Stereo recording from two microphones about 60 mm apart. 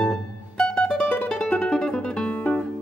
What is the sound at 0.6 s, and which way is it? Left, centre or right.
Mandolin, centre.